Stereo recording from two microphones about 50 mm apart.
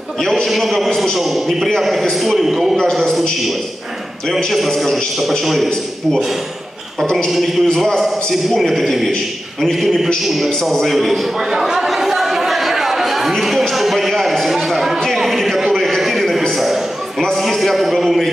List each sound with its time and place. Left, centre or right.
0.3 s a man's voice: centre
4.5 s a man's voice: centre
7.2 s a man's voice: centre
7.6 s a man's voice: centre
10.2 s a sound: centre